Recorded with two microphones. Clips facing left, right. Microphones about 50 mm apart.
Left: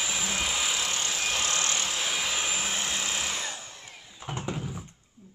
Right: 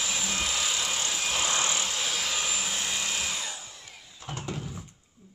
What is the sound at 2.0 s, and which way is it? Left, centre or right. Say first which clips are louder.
Vacuum cleaner: left 1 dB; centre.